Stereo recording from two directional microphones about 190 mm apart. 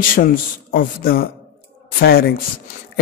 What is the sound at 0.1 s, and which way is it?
Speech, 50° left (ahead or behind).